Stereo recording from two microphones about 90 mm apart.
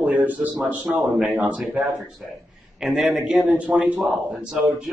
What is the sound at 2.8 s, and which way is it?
A man's voice, 5° right (ahead or behind).